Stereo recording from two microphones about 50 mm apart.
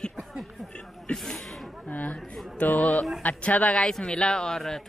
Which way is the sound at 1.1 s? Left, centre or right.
Left.